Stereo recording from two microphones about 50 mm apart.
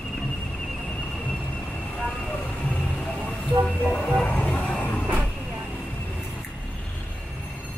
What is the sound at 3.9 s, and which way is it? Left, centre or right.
Vehicle, centre.